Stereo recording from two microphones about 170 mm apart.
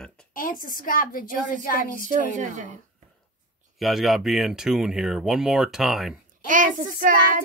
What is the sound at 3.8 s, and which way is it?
Speech, centre (ahead or behind).